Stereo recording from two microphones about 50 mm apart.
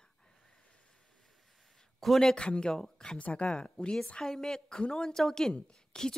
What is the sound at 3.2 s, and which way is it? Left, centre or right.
Speech, left.